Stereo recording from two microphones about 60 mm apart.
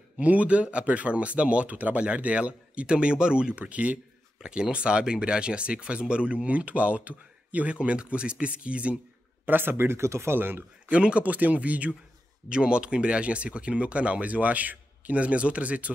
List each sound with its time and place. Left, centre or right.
0.2 s speech: right
9.5 s speech: right
10.9 s speech: centre